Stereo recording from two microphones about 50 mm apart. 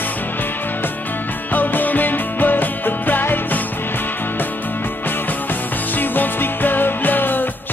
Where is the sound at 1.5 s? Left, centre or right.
Left.